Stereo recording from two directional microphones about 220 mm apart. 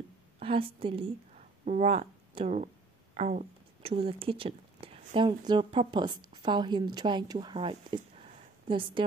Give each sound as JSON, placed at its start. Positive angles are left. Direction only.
{"t": 0.4, "sound": "speech", "side_deg": -25}